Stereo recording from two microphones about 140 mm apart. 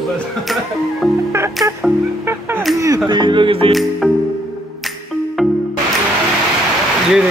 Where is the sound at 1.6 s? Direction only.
Centre (ahead or behind).